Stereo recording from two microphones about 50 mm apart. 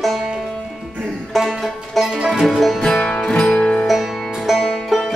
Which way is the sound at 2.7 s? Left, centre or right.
Centre.